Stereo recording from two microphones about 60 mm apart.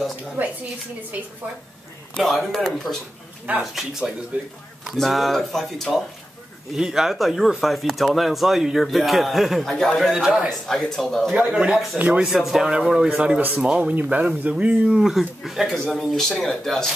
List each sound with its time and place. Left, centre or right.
0.4 s a woman's voice: right
2.2 s speech: centre
3.5 s speech: right
4.9 s speech: centre
6.7 s speech: centre
10.1 s speech: centre
10.7 s speech: centre
11.3 s speech: centre
13.9 s speech: right
14.9 s speech: centre